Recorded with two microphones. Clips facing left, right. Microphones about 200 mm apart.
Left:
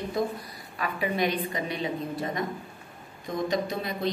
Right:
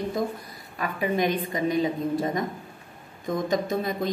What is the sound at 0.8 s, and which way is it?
A woman's voice, 45° right (ahead or behind).